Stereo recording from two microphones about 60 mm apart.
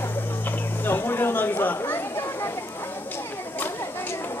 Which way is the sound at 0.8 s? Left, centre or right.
Left.